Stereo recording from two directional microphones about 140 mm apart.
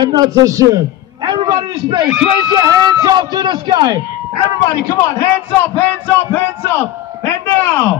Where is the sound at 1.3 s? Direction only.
30° right (ahead or behind).